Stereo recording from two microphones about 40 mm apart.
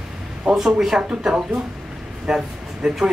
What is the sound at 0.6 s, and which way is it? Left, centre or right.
Speech, centre.